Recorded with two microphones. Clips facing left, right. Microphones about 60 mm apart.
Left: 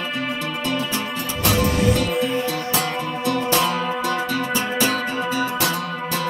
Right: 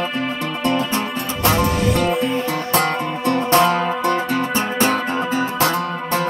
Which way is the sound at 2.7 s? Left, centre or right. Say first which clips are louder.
Right 4 dB; right.